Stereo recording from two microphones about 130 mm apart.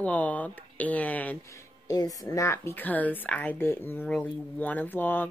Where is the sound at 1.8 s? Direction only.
30° left (ahead or behind).